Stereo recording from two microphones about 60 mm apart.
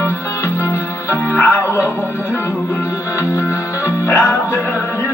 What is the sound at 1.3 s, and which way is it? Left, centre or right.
Music, left.